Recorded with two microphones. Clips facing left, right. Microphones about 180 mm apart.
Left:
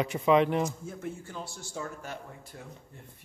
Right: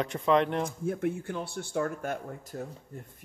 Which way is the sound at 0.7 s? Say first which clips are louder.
Right 8 dB; 60° right (ahead or behind).